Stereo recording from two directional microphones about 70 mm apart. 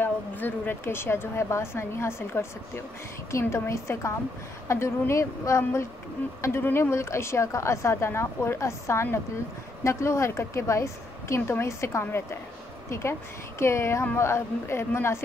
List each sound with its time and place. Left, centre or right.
0.0 s speech: left
13.6 s speech: left